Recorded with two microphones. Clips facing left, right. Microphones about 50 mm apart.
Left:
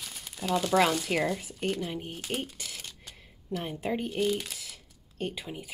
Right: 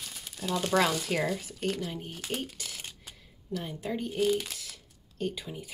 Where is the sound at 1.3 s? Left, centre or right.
Centre.